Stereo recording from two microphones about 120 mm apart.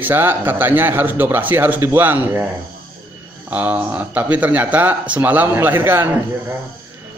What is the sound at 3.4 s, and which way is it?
A man's voice, 15° right (ahead or behind).